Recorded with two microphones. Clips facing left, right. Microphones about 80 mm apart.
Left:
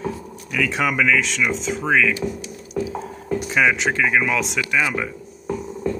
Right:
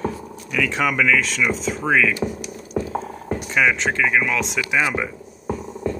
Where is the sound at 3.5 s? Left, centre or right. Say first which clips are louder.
Even; centre.